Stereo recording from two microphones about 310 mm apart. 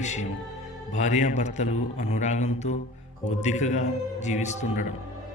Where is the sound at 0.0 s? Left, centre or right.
Left.